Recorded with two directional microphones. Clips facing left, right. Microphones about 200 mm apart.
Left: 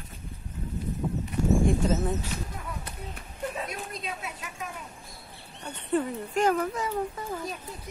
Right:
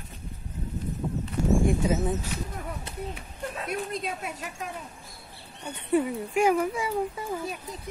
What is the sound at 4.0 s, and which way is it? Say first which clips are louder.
Speech: right 3 dB; 50° right (ahead or behind).